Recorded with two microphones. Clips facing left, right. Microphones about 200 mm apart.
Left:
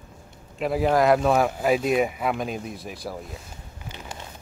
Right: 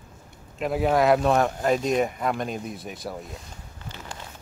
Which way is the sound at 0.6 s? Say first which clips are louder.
Left 1 dB; centre (ahead or behind).